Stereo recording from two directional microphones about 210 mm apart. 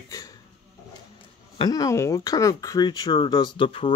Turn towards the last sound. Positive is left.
turn(degrees=25)  # may be behind; listen again after turning